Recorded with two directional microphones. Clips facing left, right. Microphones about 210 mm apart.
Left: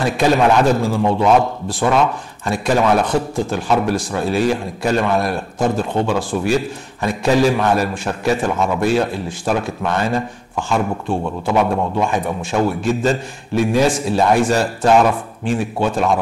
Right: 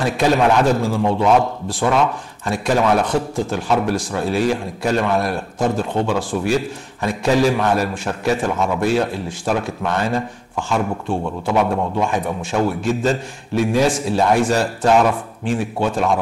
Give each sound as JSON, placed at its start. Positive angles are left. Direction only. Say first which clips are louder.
{"t": 0.0, "sound": "a man's voice", "louder": "left 1 dB", "side_deg": 10}
{"t": 0.8, "sound": "speech", "louder": "left 1 dB", "side_deg": 30}
{"t": 6.5, "sound": "a man's voice", "louder": "left 1 dB", "side_deg": 10}
{"t": 13.0, "sound": "a man's voice", "louder": "left 1 dB", "side_deg": 10}